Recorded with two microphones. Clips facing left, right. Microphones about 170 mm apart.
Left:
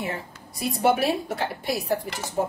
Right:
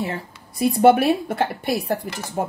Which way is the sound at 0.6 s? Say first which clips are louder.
Right 7 dB; 60° right (ahead or behind).